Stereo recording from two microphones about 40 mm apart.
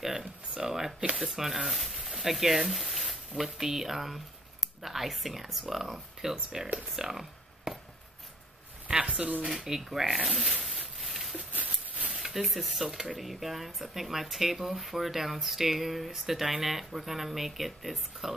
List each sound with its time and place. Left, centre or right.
0.0 s a sound: centre
1.1 s speech: centre
6.5 s speech: centre
7.0 s a sound: centre
9.0 s speech: right
9.6 s speech: centre
11.0 s a sound: centre
12.1 s speech: centre
12.9 s speech: centre
13.2 s speech: centre